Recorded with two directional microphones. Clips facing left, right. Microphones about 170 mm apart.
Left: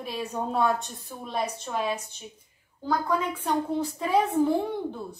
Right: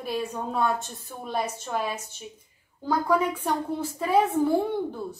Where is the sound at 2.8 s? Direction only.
10° right (ahead or behind).